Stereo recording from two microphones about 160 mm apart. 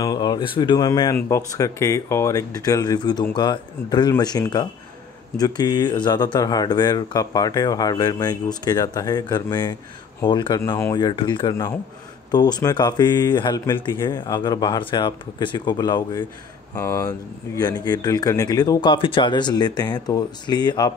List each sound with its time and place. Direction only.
0.0 s speech: 25° left (ahead or behind)
11.1 s speech: 30° left (ahead or behind)